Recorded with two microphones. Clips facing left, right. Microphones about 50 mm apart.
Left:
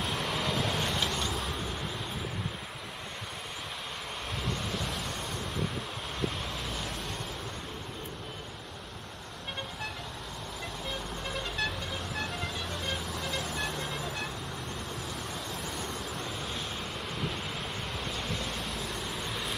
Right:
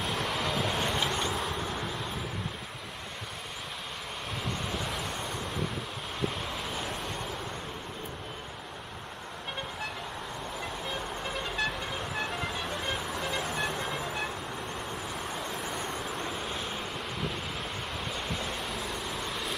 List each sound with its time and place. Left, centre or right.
0.0 s vehicle: centre
4.6 s waves: centre
6.7 s vehicle: centre
10.9 s vehicle: centre
15.6 s vehicle: right
18.0 s vehicle: centre